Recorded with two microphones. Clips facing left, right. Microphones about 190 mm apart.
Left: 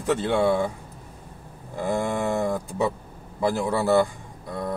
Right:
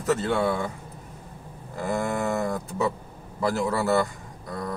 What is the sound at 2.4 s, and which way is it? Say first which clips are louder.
Speech: left 2 dB; 30° left (ahead or behind).